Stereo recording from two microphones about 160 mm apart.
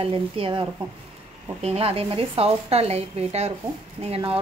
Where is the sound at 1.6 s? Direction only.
40° right (ahead or behind).